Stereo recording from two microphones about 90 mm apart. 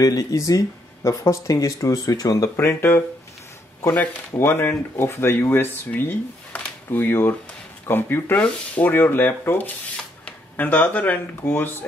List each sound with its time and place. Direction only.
0.0 s speech: 45° left (ahead or behind)
2.5 s speech: 30° left (ahead or behind)
4.4 s speech: 25° left (ahead or behind)